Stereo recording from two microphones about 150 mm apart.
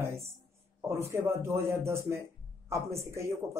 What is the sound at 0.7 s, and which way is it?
A man's voice, 15° right (ahead or behind).